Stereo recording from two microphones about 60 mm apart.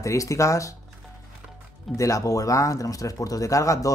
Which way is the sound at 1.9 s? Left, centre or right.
Left.